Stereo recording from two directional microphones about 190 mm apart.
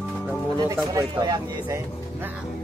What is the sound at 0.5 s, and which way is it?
Speech, 15° right (ahead or behind).